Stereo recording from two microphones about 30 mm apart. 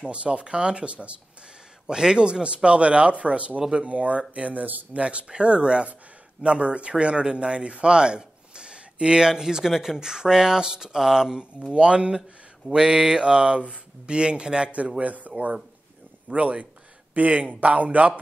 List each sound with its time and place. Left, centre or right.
0.0 s speech: right
1.9 s speech: right
2.2 s a man's voice: right
4.4 s speech: right
4.9 s a man's voice: right; by 11.4 s centre
11.7 s speech: right
12.2 s speech: centre
13.2 s speech: right
15.0 s speech: right
16.3 s a man's voice: right